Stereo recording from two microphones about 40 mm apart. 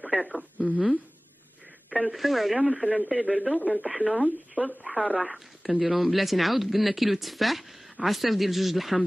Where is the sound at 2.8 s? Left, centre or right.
Left.